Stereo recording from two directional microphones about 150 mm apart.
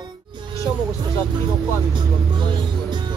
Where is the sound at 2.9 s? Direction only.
30° right (ahead or behind).